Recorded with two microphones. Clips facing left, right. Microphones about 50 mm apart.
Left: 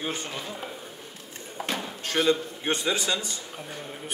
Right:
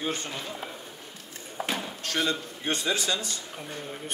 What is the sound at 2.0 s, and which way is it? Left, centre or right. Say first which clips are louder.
A man's voice: left 5 dB; centre.